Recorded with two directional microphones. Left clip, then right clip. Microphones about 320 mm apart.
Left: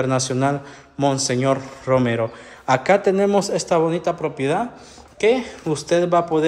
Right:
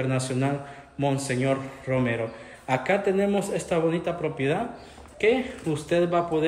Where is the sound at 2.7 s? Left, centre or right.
Centre.